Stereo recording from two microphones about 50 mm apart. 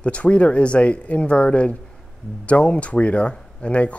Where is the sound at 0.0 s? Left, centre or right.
Left.